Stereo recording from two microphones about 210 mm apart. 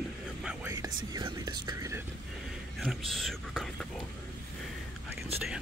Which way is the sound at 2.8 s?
Centre (ahead or behind).